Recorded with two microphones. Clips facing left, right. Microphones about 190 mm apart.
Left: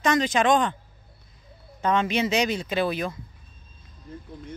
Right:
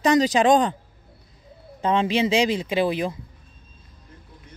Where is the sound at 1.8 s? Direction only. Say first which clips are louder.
Right 3 dB; 30° right (ahead or behind).